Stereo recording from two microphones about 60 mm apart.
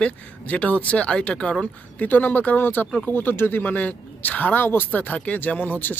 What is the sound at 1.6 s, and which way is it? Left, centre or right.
Speech, left.